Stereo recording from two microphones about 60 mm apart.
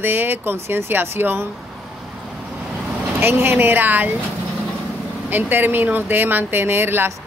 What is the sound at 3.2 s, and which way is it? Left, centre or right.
Speech, right.